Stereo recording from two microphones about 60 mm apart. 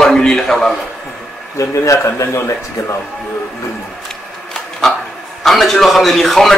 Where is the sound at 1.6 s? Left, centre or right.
Left.